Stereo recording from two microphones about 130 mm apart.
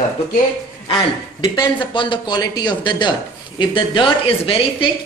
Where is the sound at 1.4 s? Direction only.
30° left (ahead or behind).